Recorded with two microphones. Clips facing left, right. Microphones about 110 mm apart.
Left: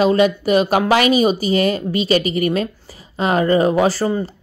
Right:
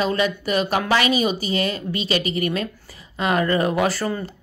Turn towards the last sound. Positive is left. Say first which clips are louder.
# left 5 dB
turn(degrees=25)  # may be behind; listen again after turning